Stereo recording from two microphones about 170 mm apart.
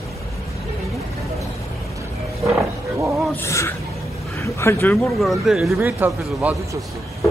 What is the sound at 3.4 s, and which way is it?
Speech, 15° left (ahead or behind).